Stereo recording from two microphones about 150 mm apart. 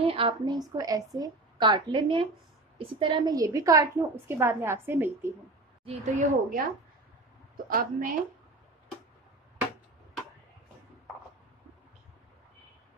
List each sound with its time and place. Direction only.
0.0 s a woman's voice: 40° right (ahead or behind)
3.3 s a woman's voice: 20° right (ahead or behind)
5.9 s a woman's voice: 55° right (ahead or behind)
7.7 s a woman's voice: 65° right (ahead or behind)